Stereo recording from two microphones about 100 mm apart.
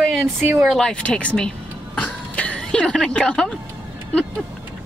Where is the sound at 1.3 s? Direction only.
10° left (ahead or behind).